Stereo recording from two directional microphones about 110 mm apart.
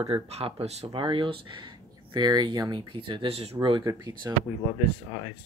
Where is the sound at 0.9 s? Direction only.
50° right (ahead or behind).